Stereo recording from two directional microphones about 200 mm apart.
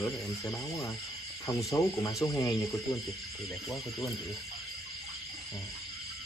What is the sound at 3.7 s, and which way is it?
Speech, 15° left (ahead or behind).